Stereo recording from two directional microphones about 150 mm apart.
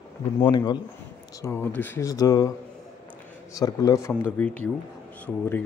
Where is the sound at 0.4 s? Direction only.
30° left (ahead or behind).